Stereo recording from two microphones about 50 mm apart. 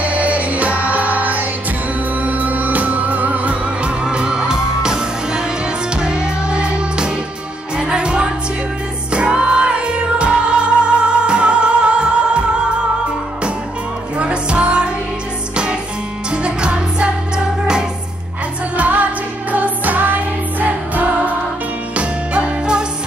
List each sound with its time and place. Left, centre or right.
0.0 s music: right
4.0 s music: centre
14.1 s music: right
18.8 s music: right